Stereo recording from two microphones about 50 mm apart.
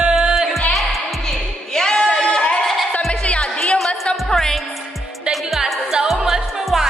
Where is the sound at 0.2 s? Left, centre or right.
Centre.